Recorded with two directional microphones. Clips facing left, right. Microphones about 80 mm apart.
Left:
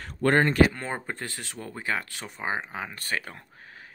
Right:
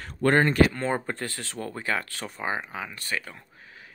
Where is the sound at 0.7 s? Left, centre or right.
Centre; by 3.9 s left.